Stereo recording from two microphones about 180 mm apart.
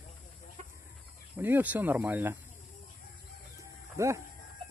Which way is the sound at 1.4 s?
10° right (ahead or behind).